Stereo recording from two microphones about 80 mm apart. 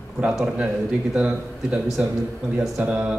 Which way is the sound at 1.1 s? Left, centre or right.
Centre.